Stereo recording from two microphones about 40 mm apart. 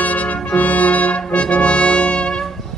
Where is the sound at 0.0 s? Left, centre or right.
Left.